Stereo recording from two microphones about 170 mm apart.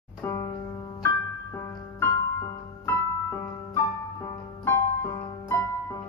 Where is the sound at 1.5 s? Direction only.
20° left (ahead or behind).